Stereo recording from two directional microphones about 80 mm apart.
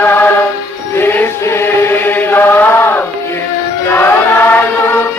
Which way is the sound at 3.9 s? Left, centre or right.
Left.